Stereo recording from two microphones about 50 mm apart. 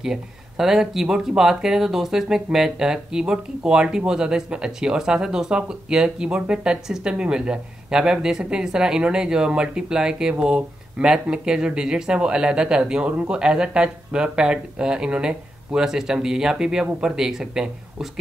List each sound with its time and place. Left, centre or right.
0.0 s speech: centre